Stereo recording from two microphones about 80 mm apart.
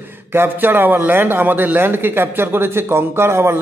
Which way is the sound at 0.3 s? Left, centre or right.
Right.